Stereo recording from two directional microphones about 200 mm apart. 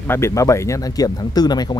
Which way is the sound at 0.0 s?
10° left (ahead or behind).